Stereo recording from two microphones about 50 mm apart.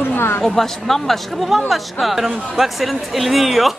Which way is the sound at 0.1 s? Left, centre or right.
Left.